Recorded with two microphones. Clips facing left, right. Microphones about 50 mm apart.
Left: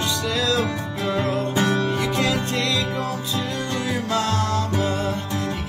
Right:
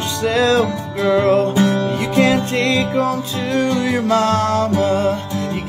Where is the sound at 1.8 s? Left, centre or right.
Right.